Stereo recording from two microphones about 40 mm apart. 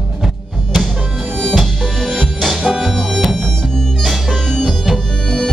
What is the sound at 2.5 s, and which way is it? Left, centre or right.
Music, centre.